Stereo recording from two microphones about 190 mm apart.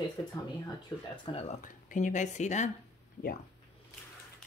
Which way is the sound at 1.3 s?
35° left (ahead or behind).